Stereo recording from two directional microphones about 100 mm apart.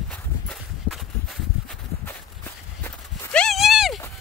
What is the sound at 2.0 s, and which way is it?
Walk, 20° left (ahead or behind).